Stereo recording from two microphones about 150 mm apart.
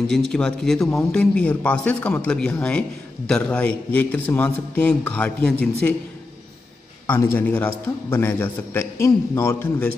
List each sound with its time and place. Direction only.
0.1 s a man's voice: 5° left (ahead or behind)
7.1 s a man's voice: 15° left (ahead or behind)